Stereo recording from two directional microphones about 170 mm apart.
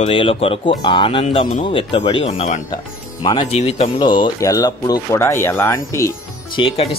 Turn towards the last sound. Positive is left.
turn(degrees=30)  # may be behind; listen again after turning